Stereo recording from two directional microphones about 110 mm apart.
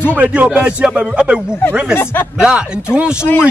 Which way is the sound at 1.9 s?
20° left (ahead or behind).